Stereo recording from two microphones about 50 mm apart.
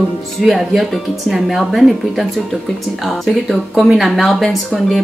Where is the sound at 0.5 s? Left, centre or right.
Centre.